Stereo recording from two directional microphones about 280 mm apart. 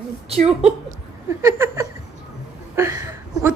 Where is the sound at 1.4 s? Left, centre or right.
Centre.